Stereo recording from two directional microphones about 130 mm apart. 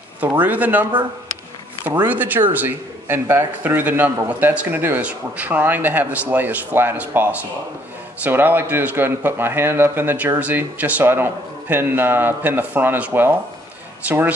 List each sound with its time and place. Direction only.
0.2 s a man's voice: 15° right (ahead or behind)
2.0 s a man's voice: 15° right (ahead or behind)